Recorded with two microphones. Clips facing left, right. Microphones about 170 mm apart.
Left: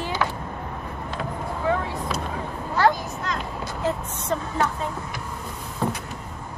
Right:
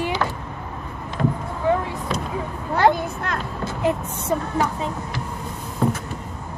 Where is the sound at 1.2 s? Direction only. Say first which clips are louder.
Right 10 dB; centre (ahead or behind).